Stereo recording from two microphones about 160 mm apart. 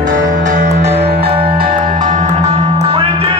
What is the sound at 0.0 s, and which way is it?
Music, 55° right (ahead or behind).